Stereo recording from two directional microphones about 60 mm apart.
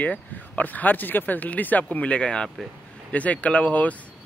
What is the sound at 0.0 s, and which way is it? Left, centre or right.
Speech, left.